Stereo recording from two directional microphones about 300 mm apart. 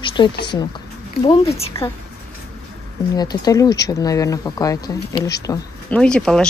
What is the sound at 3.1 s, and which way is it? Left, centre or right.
Speech, centre.